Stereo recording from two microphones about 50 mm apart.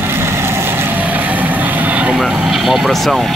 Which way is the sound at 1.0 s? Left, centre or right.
Right.